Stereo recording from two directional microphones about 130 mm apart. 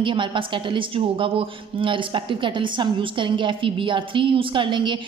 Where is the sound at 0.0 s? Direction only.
40° right (ahead or behind).